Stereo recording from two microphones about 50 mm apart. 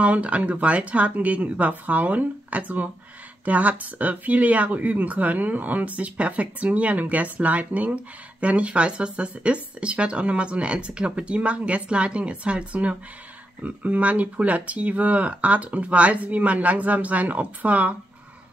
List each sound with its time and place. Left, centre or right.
0.0 s speech: right